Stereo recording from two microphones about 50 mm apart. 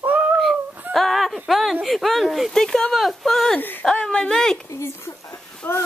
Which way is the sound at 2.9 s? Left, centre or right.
Centre.